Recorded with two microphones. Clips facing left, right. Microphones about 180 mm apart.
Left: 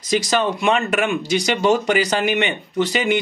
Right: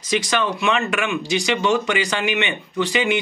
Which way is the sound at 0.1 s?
40° left (ahead or behind).